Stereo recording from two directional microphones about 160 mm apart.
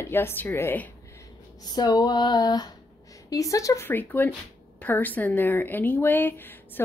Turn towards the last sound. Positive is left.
turn(degrees=10)  # may be behind; listen again after turning